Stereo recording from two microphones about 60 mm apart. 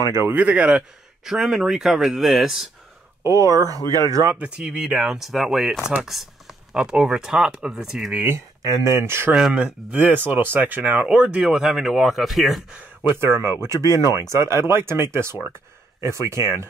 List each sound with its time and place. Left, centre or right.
0.3 s a man's voice: right
1.3 s speech: centre
3.3 s speech: right
3.8 s speech: left
4.3 s speech: right
8.6 s speech: right
9.3 s speech: centre
10.0 s speech: right
11.1 s speech: centre
13.0 s speech: right